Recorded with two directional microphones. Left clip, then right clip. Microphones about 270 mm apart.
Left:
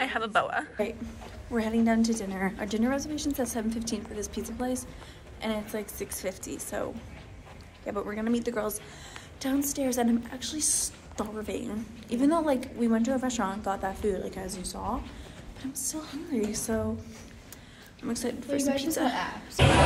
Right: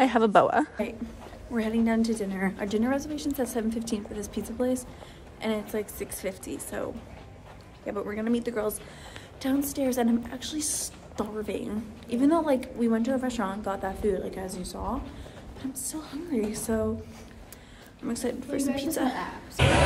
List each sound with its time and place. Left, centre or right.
0.0 s a woman's voice: right
1.5 s a woman's voice: centre
18.0 s a woman's voice: centre